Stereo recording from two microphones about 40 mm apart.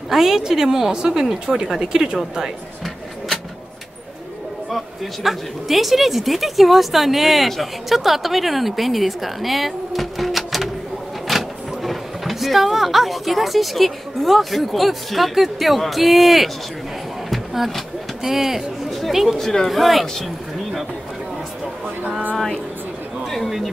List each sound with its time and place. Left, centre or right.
0.1 s a woman's voice: centre
4.6 s speech: centre
17.3 s drawer open or close: centre
18.2 s speech: centre
23.3 s a sound: centre